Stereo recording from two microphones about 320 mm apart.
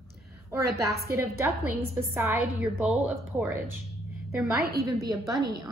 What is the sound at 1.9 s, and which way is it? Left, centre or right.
A woman's voice, centre.